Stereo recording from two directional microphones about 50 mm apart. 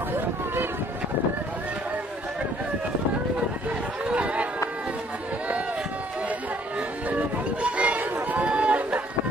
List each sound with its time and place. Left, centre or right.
4.1 s run: right
7.6 s run: right